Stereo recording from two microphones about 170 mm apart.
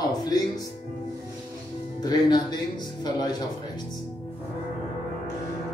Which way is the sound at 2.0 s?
25° left (ahead or behind).